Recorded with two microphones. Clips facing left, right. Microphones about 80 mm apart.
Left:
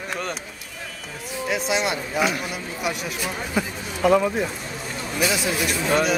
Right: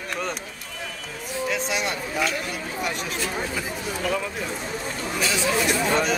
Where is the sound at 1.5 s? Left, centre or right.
Centre.